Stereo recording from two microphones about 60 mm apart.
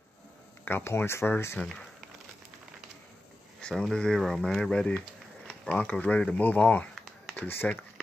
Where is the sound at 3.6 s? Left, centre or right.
Centre; by 6.8 s left.